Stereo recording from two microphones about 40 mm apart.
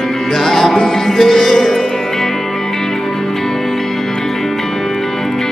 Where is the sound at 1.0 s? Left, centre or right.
Centre.